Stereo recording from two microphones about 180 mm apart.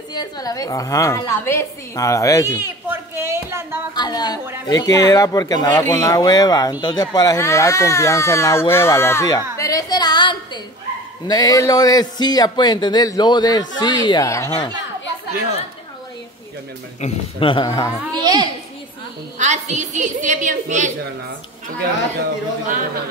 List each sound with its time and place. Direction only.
0.1 s speech: 20° left (ahead or behind)
2.6 s speech: 15° right (ahead or behind)
3.9 s speech: 25° left (ahead or behind)
9.6 s a sound: 20° left (ahead or behind)
11.2 s speech: 20° left (ahead or behind)
17.0 s speech: 30° left (ahead or behind)
18.1 s a woman's voice: 25° right (ahead or behind)
19.3 s a woman's voice: 40° right (ahead or behind)